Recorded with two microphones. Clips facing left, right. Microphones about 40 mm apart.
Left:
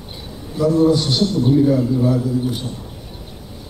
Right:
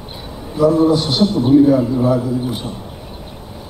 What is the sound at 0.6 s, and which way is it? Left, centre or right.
A man's voice, centre.